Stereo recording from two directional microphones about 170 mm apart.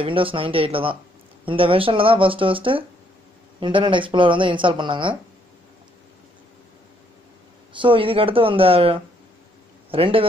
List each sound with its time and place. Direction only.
0.0 s speech: 30° right (ahead or behind)
7.7 s speech: 30° right (ahead or behind)